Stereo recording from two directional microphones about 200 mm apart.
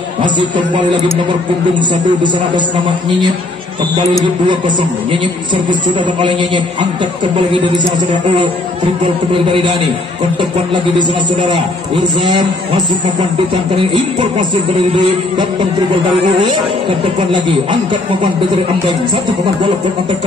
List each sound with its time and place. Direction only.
1.8 s speech: 25° right (ahead or behind)
5.1 s speech: 25° right (ahead or behind)